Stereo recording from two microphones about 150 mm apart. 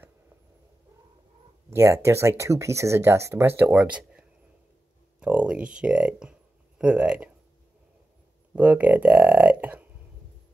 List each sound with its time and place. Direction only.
1.7 s speech: 20° right (ahead or behind)
5.2 s a sound: 5° right (ahead or behind)
5.8 s speech: 5° right (ahead or behind)
8.5 s speech: 10° right (ahead or behind)